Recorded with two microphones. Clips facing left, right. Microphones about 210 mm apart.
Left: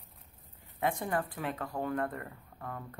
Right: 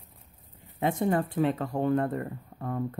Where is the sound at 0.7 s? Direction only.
25° right (ahead or behind).